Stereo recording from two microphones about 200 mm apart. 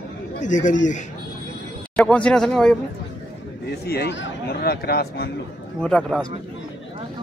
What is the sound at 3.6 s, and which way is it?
A man's voice, 55° left (ahead or behind).